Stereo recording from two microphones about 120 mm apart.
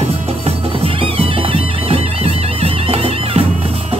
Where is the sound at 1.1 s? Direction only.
55° right (ahead or behind).